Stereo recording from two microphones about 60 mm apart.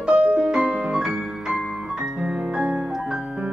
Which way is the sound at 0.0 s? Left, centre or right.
Centre.